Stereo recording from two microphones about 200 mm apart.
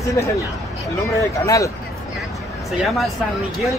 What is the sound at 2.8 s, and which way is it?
Speech, centre (ahead or behind).